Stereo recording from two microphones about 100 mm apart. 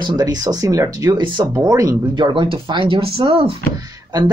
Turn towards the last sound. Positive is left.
turn(degrees=-40)  # may be behind; listen again after turning